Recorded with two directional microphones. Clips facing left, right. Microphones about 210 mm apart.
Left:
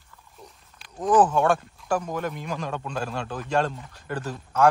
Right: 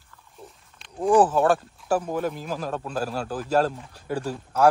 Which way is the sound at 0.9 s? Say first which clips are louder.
Right 1 dB; 10° right (ahead or behind).